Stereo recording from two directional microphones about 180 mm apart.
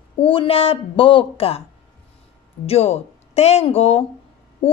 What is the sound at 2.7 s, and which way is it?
Speech, 35° left (ahead or behind).